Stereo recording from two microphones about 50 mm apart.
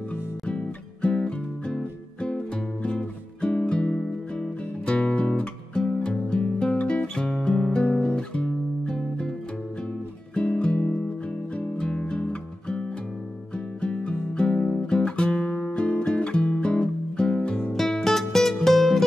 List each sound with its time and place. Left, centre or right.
0.5 s music: left
7.9 s guitar: left
8.2 s guitar: centre
10.3 s music: left
17.7 s music: centre